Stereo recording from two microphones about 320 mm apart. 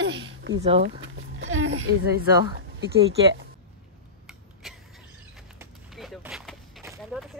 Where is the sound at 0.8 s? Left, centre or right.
Right.